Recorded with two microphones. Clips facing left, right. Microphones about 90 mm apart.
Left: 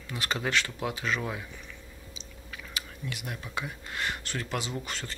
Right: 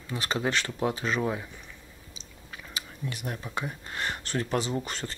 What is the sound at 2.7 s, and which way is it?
Speech, 35° right (ahead or behind).